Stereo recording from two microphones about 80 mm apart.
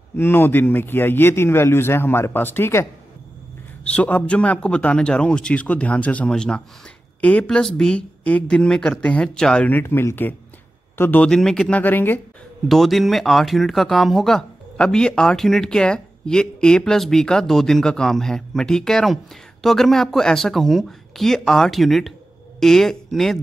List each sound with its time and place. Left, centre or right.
0.1 s a man's voice: left
3.8 s a man's voice: centre
9.7 s a man's voice: left
11.2 s a man's voice: centre
11.8 s a man's voice: left
12.6 s speech: centre